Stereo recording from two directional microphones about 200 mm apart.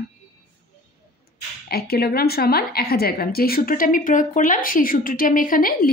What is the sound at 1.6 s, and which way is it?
A woman's voice, 50° left (ahead or behind).